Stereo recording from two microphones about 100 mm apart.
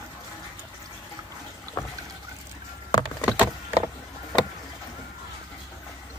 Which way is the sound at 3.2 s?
15° right (ahead or behind).